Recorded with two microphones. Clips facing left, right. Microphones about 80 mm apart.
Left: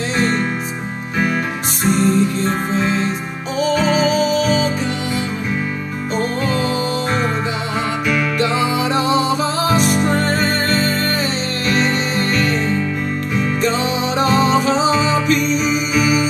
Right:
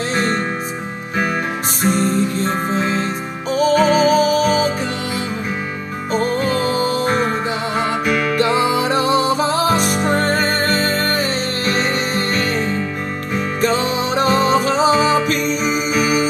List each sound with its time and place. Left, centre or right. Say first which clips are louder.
1.8 s music: left 2 dB; right
6.1 s music: right 2 dB; right